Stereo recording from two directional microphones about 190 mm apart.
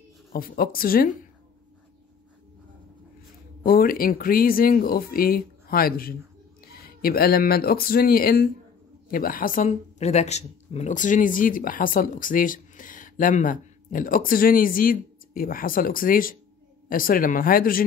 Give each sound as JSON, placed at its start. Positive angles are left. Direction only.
{"t": 0.3, "sound": "speech", "side_deg": 50}
{"t": 3.6, "sound": "speech", "side_deg": 50}